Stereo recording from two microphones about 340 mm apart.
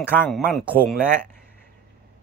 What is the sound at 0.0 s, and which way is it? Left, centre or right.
Speech, centre.